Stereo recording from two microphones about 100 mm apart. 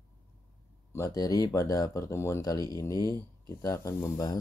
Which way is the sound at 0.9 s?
35° left (ahead or behind).